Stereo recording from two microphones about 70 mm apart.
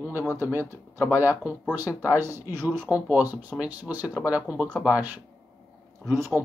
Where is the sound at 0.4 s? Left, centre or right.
Right.